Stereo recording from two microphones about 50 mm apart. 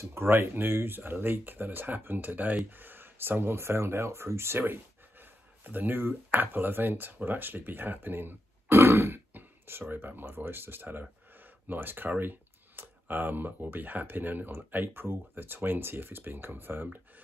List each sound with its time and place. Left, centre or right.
0.0 s speech: right
5.1 s speech: right